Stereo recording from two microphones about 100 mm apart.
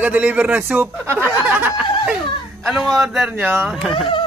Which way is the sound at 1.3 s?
20° right (ahead or behind).